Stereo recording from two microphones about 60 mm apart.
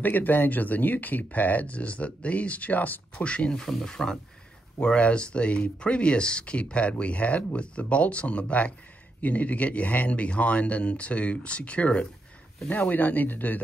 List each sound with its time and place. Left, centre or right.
0.0 s speech: left
12.6 s speech: left